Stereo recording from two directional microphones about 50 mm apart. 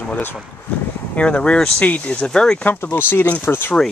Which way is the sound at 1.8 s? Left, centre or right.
Left.